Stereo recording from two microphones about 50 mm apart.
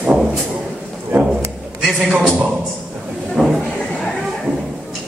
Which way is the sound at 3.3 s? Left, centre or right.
Centre.